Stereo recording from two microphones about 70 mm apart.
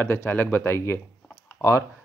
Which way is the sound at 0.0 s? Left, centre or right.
Left.